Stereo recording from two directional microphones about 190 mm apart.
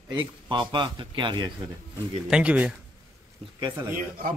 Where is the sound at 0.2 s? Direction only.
25° right (ahead or behind).